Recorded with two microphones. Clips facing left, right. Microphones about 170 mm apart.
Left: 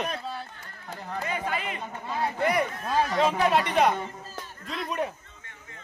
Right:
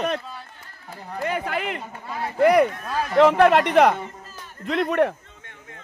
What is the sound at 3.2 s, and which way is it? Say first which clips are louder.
Speech: right 11 dB; 65° right (ahead or behind).